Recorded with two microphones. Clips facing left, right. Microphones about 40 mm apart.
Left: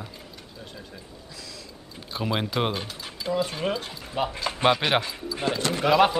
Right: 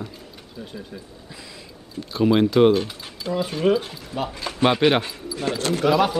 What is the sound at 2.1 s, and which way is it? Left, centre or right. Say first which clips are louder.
Speech: right 10 dB; centre.